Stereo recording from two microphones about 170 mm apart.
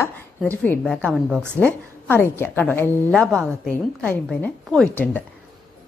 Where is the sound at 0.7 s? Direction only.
5° left (ahead or behind).